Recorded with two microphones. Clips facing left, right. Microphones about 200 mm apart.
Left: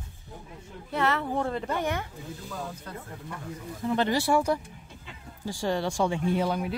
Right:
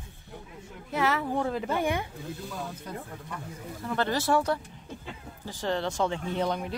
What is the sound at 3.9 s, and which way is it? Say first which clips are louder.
Speech: left 2 dB; 15° left (ahead or behind).